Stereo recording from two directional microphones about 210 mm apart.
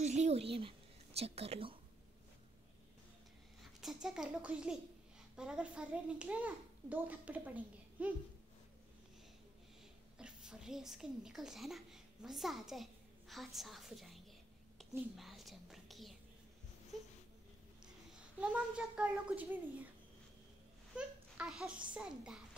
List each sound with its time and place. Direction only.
0.0 s whispering: 35° right (ahead or behind)
3.8 s a child's voice: 5° right (ahead or behind)
10.1 s a woman's voice: 5° right (ahead or behind)
14.8 s whispering: centre (ahead or behind)
18.4 s a child's voice: 5° right (ahead or behind)
20.9 s a sound: 5° right (ahead or behind)
21.9 s a child's voice: 5° right (ahead or behind)